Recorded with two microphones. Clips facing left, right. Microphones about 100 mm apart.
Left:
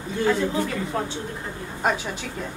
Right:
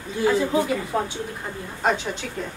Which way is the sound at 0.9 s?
20° right (ahead or behind).